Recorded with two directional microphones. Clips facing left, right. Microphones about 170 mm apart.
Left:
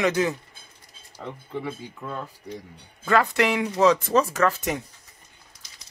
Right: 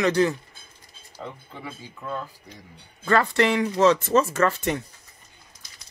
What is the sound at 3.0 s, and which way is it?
Speech, centre (ahead or behind).